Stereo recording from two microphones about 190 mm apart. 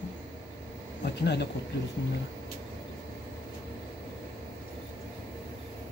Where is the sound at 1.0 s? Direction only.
60° left (ahead or behind).